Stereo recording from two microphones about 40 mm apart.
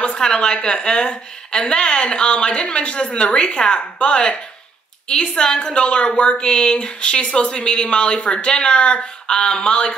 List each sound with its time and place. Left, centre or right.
0.0 s speech: left